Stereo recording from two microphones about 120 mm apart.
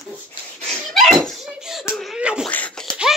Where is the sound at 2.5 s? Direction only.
10° left (ahead or behind).